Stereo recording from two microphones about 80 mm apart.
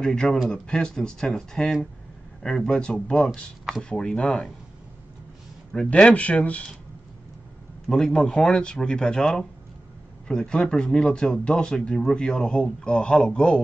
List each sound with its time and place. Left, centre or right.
0.0 s speech: centre
5.7 s speech: centre
7.9 s speech: centre